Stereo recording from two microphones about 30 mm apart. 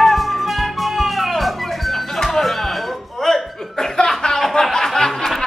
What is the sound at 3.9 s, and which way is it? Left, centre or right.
Music, centre.